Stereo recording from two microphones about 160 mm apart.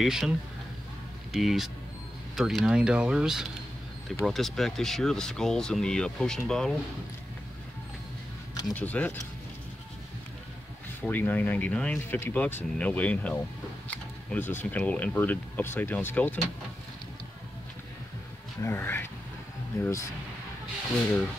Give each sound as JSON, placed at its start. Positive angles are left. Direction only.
{"t": 0.0, "sound": "speech", "side_deg": 0}
{"t": 1.3, "sound": "speech", "side_deg": 0}
{"t": 8.6, "sound": "speech", "side_deg": 10}
{"t": 11.0, "sound": "speech", "side_deg": 10}
{"t": 18.6, "sound": "speech", "side_deg": 15}